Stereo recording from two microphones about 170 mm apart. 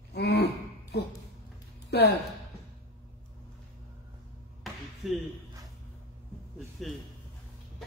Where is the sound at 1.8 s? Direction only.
75° left (ahead or behind).